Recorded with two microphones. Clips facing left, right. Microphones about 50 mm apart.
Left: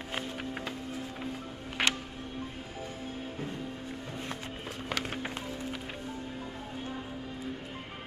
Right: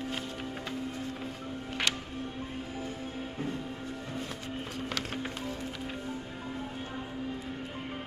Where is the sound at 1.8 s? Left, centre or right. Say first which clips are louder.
Left 3 dB; centre.